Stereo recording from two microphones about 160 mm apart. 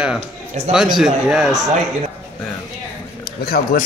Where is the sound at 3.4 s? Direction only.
75° left (ahead or behind).